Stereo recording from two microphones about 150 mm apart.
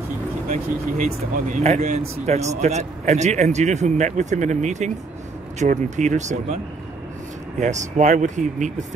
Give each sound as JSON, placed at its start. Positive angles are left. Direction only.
{"t": 0.5, "sound": "speech", "side_deg": -60}
{"t": 7.6, "sound": "speech", "side_deg": -55}